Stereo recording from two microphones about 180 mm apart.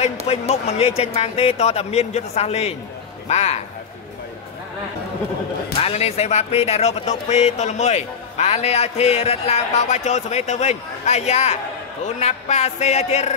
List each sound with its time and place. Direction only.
0.3 s speech: 35° left (ahead or behind)
5.8 s speech: 35° left (ahead or behind)